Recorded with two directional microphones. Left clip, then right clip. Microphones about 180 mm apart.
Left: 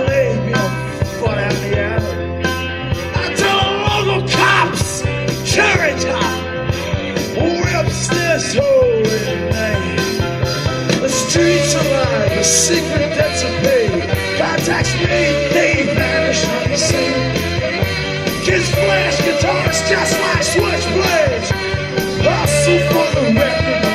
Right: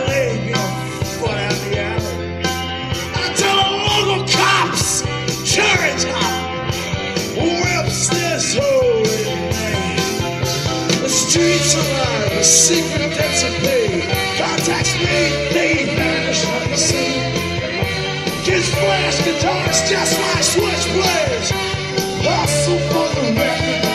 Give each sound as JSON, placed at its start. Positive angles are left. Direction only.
{"t": 3.3, "sound": "music", "side_deg": 0}
{"t": 7.7, "sound": "music", "side_deg": 5}
{"t": 10.9, "sound": "music", "side_deg": 0}
{"t": 18.5, "sound": "music", "side_deg": 10}
{"t": 21.9, "sound": "music", "side_deg": 20}